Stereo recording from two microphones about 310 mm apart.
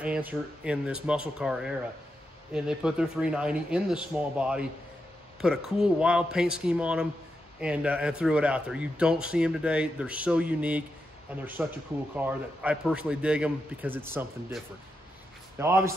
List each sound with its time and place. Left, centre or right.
0.0 s speech: centre
15.6 s speech: centre